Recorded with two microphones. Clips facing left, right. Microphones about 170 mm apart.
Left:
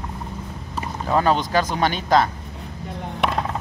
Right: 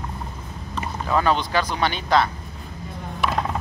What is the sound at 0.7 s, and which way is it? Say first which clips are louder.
Speech: left 1 dB; 35° left (ahead or behind).